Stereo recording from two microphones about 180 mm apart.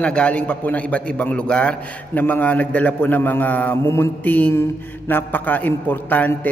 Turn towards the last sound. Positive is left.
turn(degrees=10)  # may be behind; listen again after turning